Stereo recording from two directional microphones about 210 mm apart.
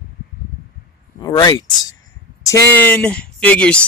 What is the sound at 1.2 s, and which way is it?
Speech, 20° left (ahead or behind).